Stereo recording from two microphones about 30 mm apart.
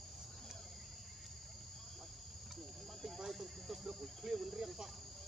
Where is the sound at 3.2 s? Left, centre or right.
Centre.